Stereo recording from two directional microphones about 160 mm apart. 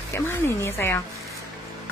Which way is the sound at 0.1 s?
15° left (ahead or behind).